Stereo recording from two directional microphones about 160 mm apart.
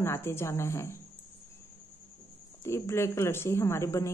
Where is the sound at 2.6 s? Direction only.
15° left (ahead or behind).